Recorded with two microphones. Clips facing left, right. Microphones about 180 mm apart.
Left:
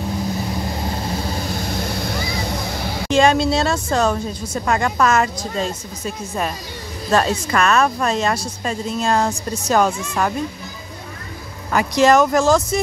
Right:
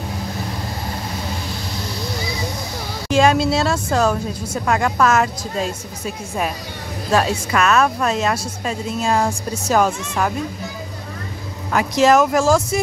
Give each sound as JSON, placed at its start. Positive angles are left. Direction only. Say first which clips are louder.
{"t": 1.5, "sound": "vehicle", "louder": "left 4 dB", "side_deg": 50}
{"t": 3.1, "sound": "a woman's voice", "louder": "even", "side_deg": -5}
{"t": 11.7, "sound": "a woman's voice", "louder": "even", "side_deg": 0}